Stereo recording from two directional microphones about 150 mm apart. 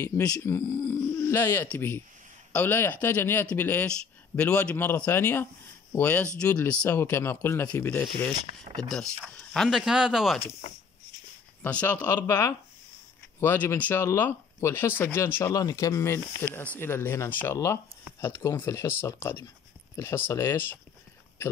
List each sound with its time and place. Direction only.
0.0 s speech: 20° left (ahead or behind)
8.8 s speech: 5° left (ahead or behind)
11.6 s speech: 10° left (ahead or behind)